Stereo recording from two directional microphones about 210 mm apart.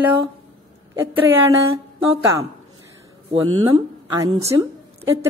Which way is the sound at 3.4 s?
25° right (ahead or behind).